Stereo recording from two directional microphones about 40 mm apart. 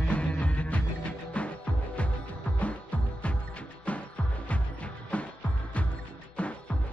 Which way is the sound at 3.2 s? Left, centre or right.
Left.